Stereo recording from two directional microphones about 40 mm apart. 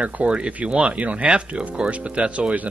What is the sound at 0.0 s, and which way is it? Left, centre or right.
Speech, right.